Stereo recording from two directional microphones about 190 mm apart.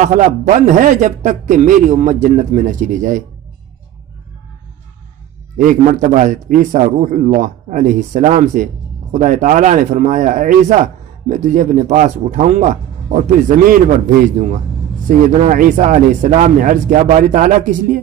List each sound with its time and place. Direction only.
0.0 s a man's voice: 40° right (ahead or behind)
5.6 s a man's voice: 45° right (ahead or behind)